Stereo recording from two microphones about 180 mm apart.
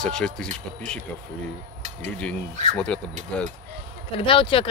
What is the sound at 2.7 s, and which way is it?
Speech, 5° left (ahead or behind).